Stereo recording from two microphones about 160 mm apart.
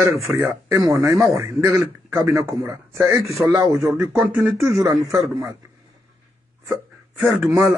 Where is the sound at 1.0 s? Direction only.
20° right (ahead or behind).